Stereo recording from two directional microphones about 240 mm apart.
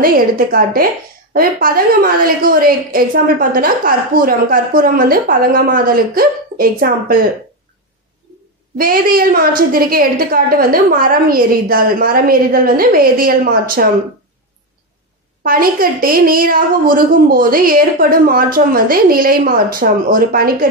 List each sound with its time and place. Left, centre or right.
0.0 s a woman's voice: right
8.7 s a woman's voice: right
15.4 s a woman's voice: right